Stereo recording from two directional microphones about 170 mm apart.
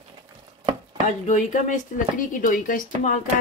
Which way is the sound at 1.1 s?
50° left (ahead or behind).